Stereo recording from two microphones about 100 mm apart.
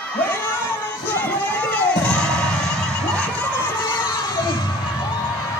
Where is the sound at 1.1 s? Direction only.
15° left (ahead or behind).